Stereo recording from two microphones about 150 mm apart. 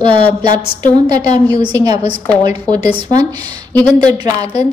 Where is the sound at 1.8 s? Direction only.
25° right (ahead or behind).